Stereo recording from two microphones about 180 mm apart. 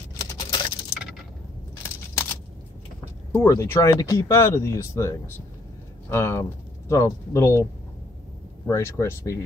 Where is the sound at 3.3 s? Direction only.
15° left (ahead or behind).